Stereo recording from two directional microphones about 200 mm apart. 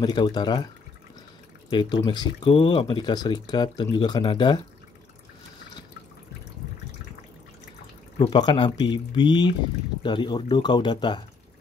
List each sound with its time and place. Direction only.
0.0 s speech: 20° left (ahead or behind)
1.7 s speech: 25° left (ahead or behind)
8.2 s speech: 20° left (ahead or behind)